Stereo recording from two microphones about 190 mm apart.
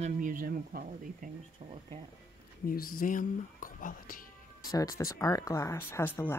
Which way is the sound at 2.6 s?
50° left (ahead or behind).